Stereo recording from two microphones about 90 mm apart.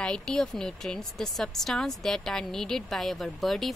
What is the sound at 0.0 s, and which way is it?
Speech, 10° left (ahead or behind).